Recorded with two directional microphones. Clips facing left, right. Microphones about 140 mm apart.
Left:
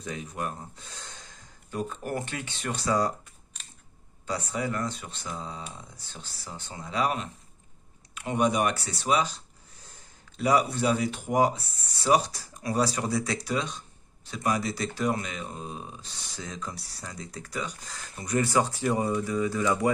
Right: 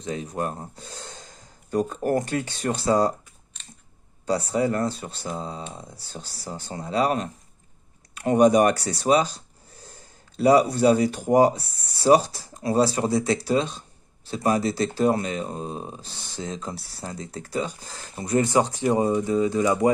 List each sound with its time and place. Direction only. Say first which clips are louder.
0.0 s speech: right 6 dB; 35° right (ahead or behind)
4.3 s speech: right 8 dB; 35° right (ahead or behind)
16.7 s speech: right 6 dB; centre (ahead or behind)
17.0 s speech: right 6 dB; 30° right (ahead or behind)